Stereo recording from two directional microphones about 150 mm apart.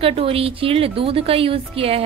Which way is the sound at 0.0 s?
40° right (ahead or behind).